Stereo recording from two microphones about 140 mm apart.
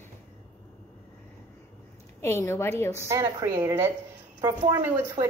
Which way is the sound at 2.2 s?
20° left (ahead or behind).